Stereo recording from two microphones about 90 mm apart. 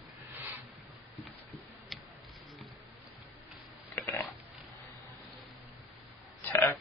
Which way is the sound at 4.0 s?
30° left (ahead or behind).